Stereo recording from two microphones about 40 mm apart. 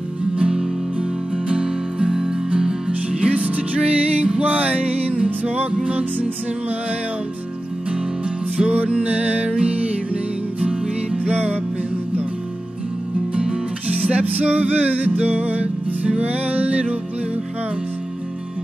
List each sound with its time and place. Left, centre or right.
0.4 s music: centre; by 5.6 s right
8.5 s music: right
10.6 s music: right
11.1 s music: right
13.8 s music: right